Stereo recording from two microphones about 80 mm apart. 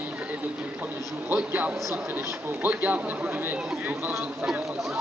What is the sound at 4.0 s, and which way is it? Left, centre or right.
Speech, right.